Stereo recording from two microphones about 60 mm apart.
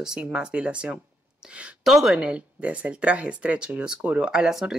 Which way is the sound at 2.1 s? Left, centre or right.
Centre.